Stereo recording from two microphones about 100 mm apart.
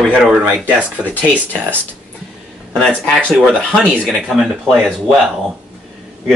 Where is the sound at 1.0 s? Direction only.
15° left (ahead or behind).